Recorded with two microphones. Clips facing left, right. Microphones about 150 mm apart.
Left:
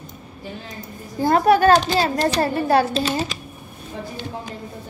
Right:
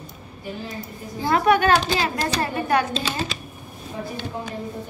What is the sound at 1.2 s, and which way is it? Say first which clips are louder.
A child's voice: left 4 dB; 35° left (ahead or behind).